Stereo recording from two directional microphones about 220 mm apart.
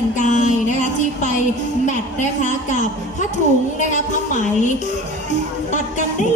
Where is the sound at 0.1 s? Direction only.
35° left (ahead or behind).